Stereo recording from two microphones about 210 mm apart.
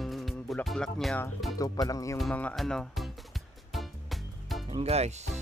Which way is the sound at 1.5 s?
15° left (ahead or behind).